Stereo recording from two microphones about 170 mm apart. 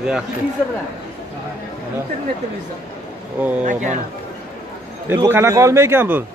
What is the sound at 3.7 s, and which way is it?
Speech, 45° right (ahead or behind).